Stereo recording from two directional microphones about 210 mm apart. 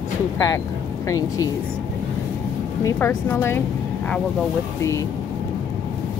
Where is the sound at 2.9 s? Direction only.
10° left (ahead or behind).